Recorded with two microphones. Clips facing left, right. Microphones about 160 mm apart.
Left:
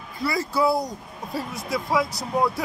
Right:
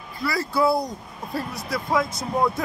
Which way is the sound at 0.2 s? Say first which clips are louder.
Right 1 dB; 20° left (ahead or behind).